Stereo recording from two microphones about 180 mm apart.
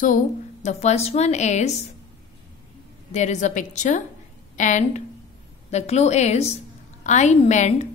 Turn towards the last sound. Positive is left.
turn(degrees=40)  # may be behind; listen again after turning